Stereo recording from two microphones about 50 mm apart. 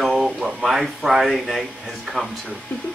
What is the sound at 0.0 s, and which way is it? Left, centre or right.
Speech, centre.